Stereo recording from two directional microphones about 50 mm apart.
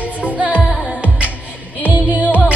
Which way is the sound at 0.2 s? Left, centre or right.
Right.